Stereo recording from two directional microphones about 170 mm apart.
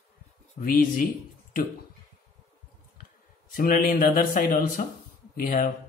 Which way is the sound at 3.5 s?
55° left (ahead or behind).